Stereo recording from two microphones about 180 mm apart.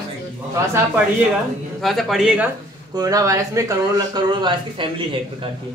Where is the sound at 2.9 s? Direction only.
20° right (ahead or behind).